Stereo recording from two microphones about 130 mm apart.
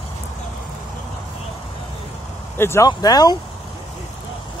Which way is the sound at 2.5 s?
20° left (ahead or behind).